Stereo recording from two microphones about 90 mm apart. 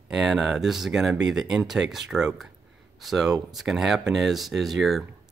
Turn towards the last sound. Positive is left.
turn(degrees=0)  # may be behind; listen again after turning